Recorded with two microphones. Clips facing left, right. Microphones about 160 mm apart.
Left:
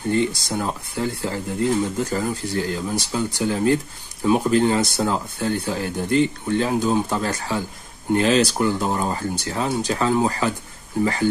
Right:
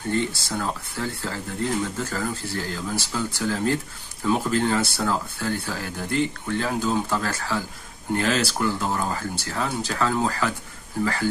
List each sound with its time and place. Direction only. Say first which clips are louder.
0.1 s speech: left 4 dB; 15° left (ahead or behind)